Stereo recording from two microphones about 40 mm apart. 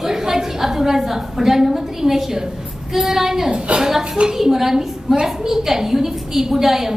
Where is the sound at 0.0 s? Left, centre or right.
Centre.